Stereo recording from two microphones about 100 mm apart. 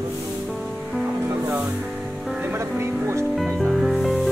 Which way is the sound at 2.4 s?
25° right (ahead or behind).